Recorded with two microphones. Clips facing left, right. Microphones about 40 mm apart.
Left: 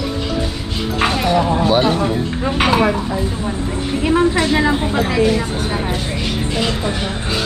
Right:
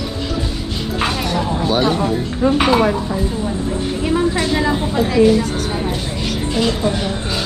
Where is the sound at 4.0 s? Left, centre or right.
Left.